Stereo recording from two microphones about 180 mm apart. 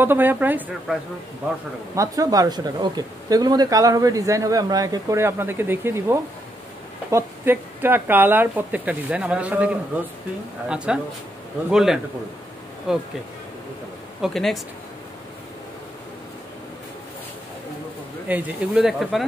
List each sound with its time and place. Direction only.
0.0 s speech: 10° right (ahead or behind)
2.0 s speech: 20° right (ahead or behind)
10.9 s speech: 5° right (ahead or behind)
14.2 s speech: centre (ahead or behind)
18.3 s speech: 5° right (ahead or behind)